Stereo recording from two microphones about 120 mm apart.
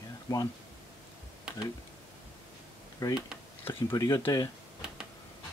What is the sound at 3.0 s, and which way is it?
Speech, 30° left (ahead or behind).